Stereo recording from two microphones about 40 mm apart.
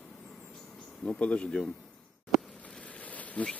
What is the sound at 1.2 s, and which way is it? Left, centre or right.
Speech, left.